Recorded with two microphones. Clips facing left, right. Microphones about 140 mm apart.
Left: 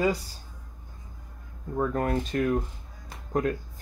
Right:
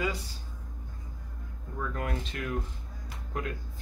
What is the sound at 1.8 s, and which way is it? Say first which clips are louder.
Speech: left 8 dB; 40° left (ahead or behind).